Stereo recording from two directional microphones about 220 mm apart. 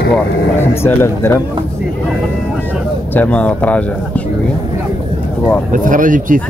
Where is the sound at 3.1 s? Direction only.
5° left (ahead or behind).